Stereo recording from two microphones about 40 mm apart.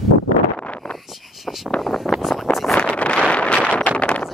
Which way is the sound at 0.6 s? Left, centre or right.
Left.